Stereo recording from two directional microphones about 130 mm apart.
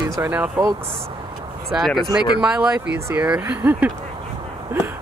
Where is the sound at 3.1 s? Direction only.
10° right (ahead or behind).